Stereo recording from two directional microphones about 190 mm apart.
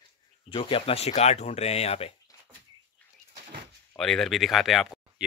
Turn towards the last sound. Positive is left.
turn(degrees=0)  # may be behind; listen again after turning